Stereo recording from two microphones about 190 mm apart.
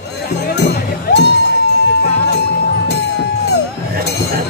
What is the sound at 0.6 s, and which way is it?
Music, 60° left (ahead or behind).